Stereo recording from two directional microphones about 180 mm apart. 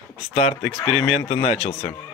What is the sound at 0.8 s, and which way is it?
Chicken, 35° left (ahead or behind).